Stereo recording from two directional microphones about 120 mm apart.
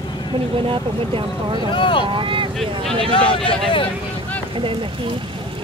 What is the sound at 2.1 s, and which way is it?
Speech, 45° right (ahead or behind).